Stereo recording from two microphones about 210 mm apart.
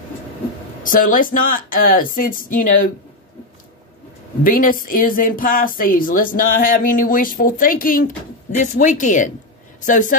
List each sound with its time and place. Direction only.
0.8 s speech: 40° left (ahead or behind)
4.4 s a woman's voice: 40° left (ahead or behind)